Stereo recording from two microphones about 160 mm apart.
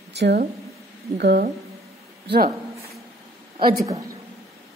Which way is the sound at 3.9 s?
20° right (ahead or behind).